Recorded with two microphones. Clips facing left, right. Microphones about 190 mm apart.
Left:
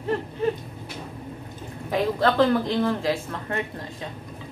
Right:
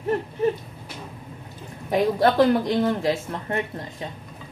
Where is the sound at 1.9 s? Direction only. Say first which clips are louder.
Right 3 dB; 20° right (ahead or behind).